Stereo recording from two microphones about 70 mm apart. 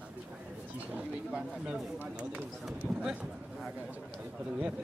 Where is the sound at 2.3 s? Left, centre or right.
Centre.